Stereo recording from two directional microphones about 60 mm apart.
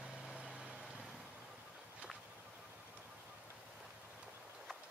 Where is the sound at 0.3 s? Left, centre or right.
Centre.